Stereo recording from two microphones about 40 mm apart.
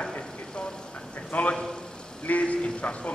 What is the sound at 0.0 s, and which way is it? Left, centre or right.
Vehicle, left.